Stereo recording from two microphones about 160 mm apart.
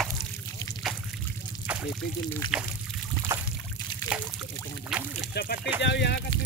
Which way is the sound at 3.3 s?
15° right (ahead or behind).